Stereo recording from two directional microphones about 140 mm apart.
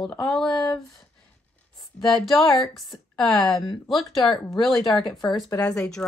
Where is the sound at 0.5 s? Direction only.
30° left (ahead or behind).